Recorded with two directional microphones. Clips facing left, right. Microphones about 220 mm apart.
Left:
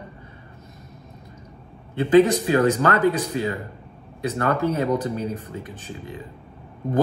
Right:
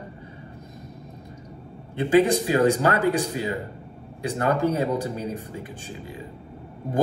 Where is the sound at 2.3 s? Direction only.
15° right (ahead or behind).